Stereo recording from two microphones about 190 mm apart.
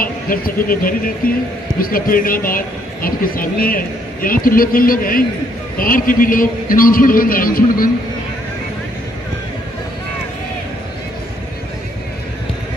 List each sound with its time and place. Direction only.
0.0 s speech: 50° left (ahead or behind)